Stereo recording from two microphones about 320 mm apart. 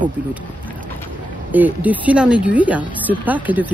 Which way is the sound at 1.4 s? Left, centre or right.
Centre.